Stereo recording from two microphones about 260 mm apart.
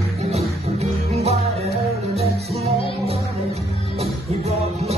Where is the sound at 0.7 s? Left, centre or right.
Right.